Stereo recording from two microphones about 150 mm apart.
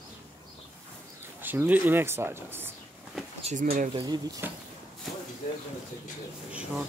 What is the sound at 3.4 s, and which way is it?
Speech, 55° right (ahead or behind).